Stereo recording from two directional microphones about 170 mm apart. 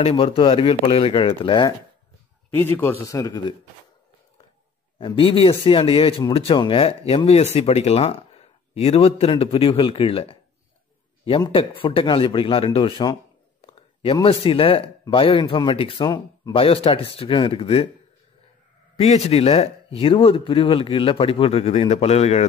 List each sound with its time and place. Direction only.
0.0 s speech: 30° left (ahead or behind)
2.5 s a man's voice: 15° left (ahead or behind)
4.9 s speech: 30° left (ahead or behind)
18.9 s speech: 40° left (ahead or behind)